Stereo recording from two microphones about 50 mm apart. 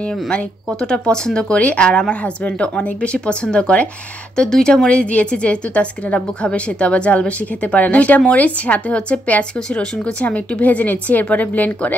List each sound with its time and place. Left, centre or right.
0.7 s a woman's voice: centre
4.4 s speech: centre
4.8 s a woman's voice: left